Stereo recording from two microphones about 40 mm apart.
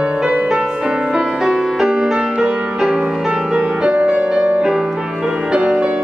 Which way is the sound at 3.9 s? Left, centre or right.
Right.